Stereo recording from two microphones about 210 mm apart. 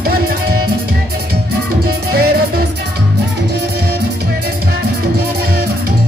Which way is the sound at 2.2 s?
45° right (ahead or behind).